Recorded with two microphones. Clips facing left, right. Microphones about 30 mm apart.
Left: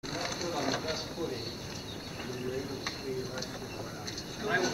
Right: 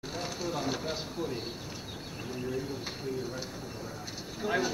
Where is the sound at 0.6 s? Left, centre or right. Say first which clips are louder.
Left 2 dB; centre.